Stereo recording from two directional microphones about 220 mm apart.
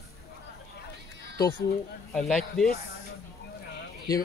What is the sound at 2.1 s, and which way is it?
Speech, centre (ahead or behind).